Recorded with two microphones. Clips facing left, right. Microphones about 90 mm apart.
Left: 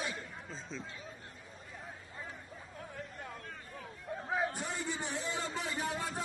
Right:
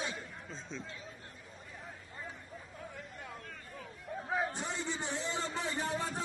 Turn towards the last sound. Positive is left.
turn(degrees=-30)  # may be behind; listen again after turning